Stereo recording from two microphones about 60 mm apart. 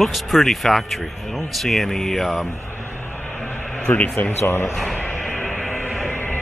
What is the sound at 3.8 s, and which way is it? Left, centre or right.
Speech, left.